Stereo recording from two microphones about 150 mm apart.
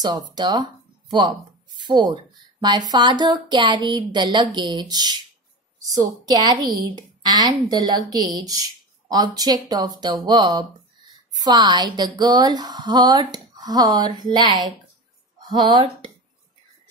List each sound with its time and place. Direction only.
0.0 s speech: 30° right (ahead or behind)
6.2 s speech: 25° right (ahead or behind)